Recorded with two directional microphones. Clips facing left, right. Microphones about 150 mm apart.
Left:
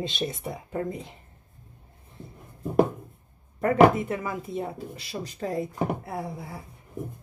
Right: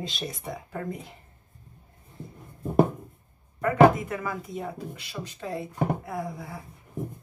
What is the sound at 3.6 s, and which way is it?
Speech, 25° left (ahead or behind).